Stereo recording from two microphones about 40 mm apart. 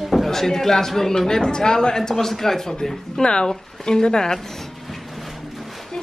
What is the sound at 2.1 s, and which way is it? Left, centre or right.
Speech, centre.